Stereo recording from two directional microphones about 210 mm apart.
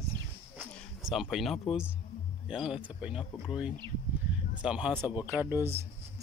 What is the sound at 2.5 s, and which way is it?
Speech, 5° right (ahead or behind).